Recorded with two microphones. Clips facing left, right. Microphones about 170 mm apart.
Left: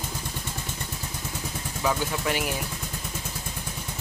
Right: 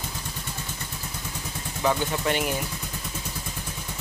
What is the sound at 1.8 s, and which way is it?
Speech, centre (ahead or behind).